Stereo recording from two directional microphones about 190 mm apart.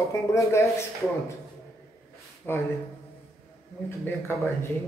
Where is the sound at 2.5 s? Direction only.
10° left (ahead or behind).